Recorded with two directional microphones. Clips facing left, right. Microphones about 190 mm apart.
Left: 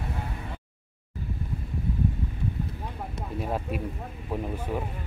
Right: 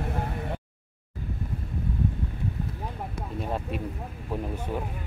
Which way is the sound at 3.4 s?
5° left (ahead or behind).